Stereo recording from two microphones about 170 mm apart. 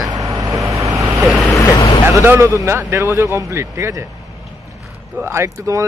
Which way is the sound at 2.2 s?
15° right (ahead or behind).